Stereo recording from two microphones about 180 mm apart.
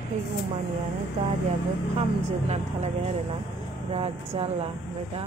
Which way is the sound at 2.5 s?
40° right (ahead or behind).